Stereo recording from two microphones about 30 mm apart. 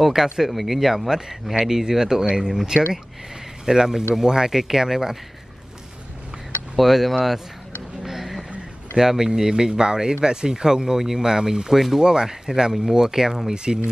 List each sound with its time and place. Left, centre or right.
0.1 s speech: centre
6.8 s speech: centre
8.0 s a sound: centre
8.9 s speech: centre